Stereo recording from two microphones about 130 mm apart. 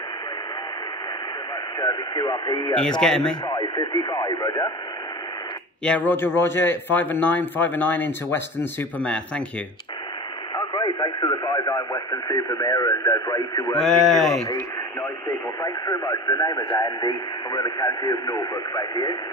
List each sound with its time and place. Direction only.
1.8 s speech: 25° left (ahead or behind)
2.8 s speech: 5° left (ahead or behind)
3.4 s speech: 30° left (ahead or behind)
5.9 s a man's voice: 15° left (ahead or behind)
10.5 s speech: 30° left (ahead or behind)
13.7 s speech: 5° left (ahead or behind)
14.5 s speech: 25° left (ahead or behind)